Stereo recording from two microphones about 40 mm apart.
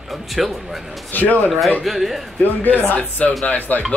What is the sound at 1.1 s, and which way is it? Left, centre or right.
Speech, left.